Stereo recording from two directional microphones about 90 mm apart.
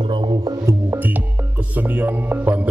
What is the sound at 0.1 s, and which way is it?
Music, 65° right (ahead or behind).